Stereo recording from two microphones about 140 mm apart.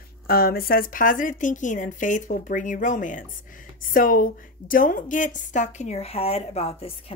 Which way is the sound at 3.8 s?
80° left.